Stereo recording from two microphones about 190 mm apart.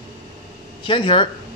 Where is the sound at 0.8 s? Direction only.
25° left (ahead or behind).